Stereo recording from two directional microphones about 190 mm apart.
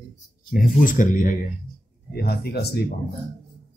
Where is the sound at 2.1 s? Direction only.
55° left (ahead or behind).